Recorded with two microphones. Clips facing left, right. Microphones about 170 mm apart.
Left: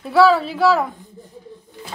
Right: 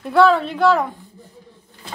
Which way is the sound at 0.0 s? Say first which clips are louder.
Even; centre (ahead or behind).